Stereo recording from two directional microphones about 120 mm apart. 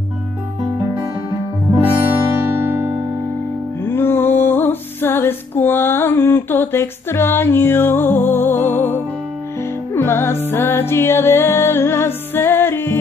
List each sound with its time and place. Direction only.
3.8 s music: 20° left (ahead or behind)